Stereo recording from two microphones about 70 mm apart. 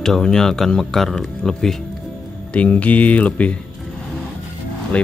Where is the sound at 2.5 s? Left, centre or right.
Centre.